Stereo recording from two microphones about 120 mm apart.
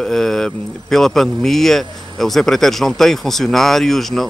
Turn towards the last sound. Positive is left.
turn(degrees=0)  # may be behind; listen again after turning